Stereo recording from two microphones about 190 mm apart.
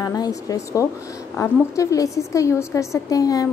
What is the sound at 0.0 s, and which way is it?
A woman's voice, 20° left (ahead or behind).